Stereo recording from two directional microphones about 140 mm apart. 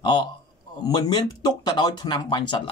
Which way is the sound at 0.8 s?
30° left (ahead or behind).